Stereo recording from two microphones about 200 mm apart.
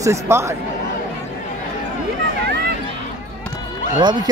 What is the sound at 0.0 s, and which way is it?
Speech, 15° right (ahead or behind).